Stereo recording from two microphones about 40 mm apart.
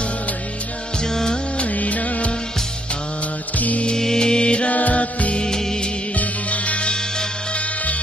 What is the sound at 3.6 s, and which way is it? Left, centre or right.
Mantra, left.